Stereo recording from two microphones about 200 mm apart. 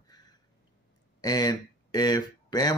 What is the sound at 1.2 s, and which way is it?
Speech, 20° left (ahead or behind).